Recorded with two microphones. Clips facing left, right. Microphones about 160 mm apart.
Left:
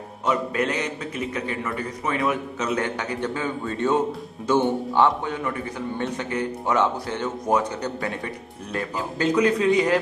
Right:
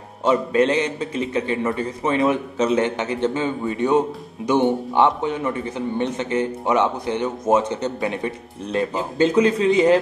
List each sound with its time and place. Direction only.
0.2 s a man's voice: 25° right (ahead or behind)